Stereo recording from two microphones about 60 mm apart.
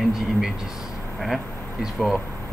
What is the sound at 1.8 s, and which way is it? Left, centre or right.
Speech, centre.